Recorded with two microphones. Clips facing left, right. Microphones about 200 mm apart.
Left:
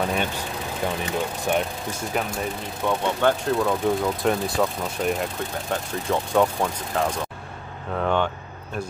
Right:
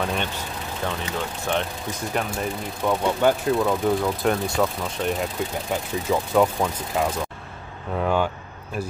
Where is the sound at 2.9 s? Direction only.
10° right (ahead or behind).